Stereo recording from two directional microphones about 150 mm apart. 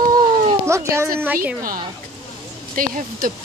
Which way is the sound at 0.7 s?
20° right (ahead or behind).